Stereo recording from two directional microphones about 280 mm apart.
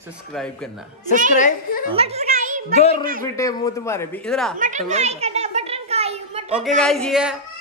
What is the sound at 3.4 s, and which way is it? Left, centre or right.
Speech, centre.